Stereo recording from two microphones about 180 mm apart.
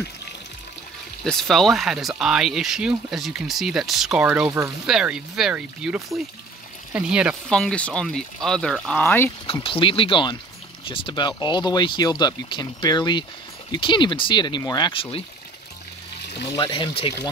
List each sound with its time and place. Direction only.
1.2 s speech: centre (ahead or behind)
7.5 s speech: 5° left (ahead or behind)
9.5 s speech: 30° left (ahead or behind)
16.5 s speech: 30° left (ahead or behind)